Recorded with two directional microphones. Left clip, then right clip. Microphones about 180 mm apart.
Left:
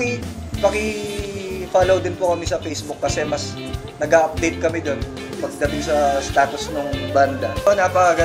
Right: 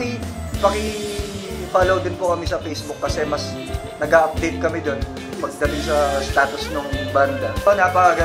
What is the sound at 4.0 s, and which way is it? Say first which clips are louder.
Speech: even; 35° left (ahead or behind).